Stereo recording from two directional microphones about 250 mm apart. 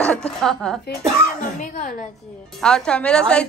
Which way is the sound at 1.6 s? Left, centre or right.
Left.